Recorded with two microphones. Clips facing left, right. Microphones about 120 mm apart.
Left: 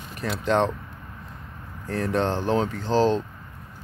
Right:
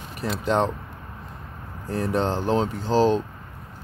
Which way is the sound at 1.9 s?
10° right (ahead or behind).